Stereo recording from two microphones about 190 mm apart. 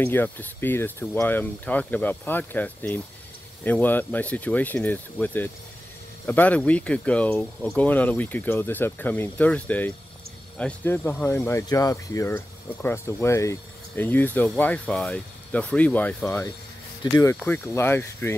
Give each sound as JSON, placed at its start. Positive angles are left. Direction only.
{"t": 0.0, "sound": "speech", "side_deg": 10}